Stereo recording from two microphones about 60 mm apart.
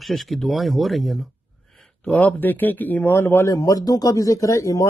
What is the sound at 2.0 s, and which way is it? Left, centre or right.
Speech, left.